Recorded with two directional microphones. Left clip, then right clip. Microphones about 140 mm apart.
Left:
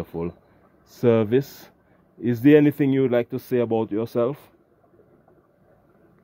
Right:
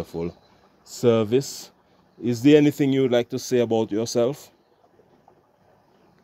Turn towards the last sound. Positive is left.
turn(degrees=-30)  # may be behind; listen again after turning